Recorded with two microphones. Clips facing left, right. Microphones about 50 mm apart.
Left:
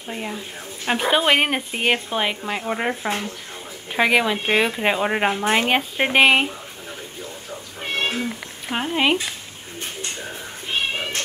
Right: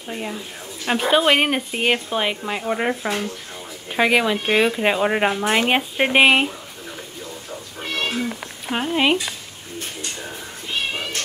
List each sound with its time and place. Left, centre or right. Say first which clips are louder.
0.1 s speech: right 1 dB; centre
4.8 s speech: right 1 dB; centre
5.3 s speech: even; left
5.7 s speech: right 1 dB; centre
7.8 s cat: left 1 dB; left
8.7 s speech: right 1 dB; centre
10.7 s cat: left 1 dB; left